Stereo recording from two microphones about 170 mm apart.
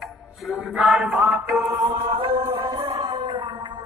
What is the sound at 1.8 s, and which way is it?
Chant, 30° right (ahead or behind).